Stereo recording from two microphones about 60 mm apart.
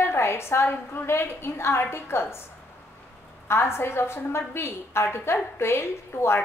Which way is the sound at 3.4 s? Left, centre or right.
Left.